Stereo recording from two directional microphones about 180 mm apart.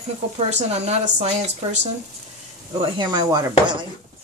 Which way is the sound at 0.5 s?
40° right (ahead or behind).